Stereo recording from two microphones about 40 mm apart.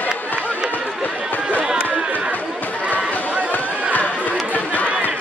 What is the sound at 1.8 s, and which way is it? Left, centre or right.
Chatter, right.